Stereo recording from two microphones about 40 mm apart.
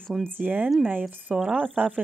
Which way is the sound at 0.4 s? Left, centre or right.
Right.